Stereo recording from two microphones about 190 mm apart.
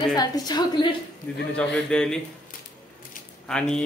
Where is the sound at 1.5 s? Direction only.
5° left (ahead or behind).